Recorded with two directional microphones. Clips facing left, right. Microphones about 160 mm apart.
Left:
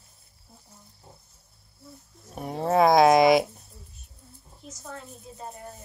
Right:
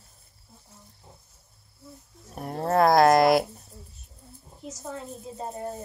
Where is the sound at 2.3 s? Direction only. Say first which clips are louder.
Left 1 dB; centre (ahead or behind).